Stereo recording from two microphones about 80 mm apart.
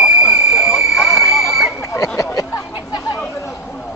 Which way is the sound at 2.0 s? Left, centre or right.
Left.